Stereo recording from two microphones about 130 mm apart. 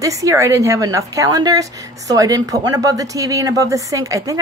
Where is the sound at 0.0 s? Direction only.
25° right (ahead or behind).